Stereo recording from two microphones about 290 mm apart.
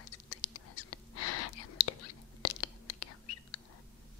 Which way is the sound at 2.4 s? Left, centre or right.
Left.